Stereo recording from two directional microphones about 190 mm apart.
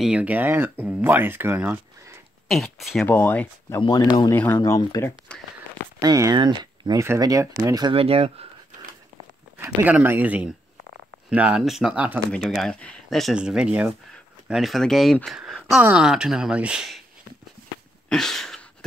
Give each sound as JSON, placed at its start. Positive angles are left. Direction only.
{"t": 0.0, "sound": "speech", "side_deg": -5}
{"t": 3.8, "sound": "speech", "side_deg": 20}
{"t": 5.9, "sound": "speech", "side_deg": -15}
{"t": 9.6, "sound": "speech", "side_deg": -10}
{"t": 18.1, "sound": "a sound", "side_deg": 0}